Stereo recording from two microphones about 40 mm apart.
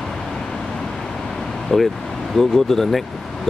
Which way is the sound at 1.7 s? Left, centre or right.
Centre.